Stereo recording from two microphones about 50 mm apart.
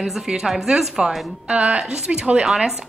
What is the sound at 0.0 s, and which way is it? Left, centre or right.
A woman's voice, centre.